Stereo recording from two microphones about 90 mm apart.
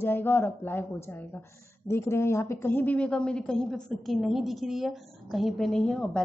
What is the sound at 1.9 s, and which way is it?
A woman's voice, 30° left (ahead or behind).